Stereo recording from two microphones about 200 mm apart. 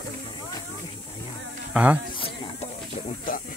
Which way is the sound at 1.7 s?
5° right (ahead or behind).